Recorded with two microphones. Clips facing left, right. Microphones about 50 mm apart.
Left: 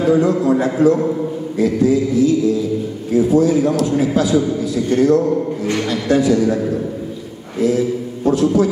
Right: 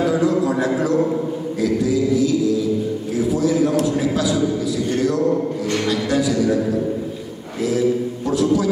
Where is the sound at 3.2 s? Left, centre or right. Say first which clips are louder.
Left 5 dB; left.